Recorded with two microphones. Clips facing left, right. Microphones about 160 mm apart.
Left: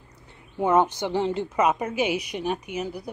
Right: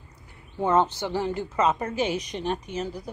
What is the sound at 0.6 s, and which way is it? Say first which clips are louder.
A woman's voice: left 2 dB; 15° left (ahead or behind).